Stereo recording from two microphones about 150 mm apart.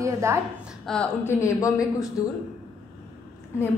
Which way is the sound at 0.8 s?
5° left (ahead or behind).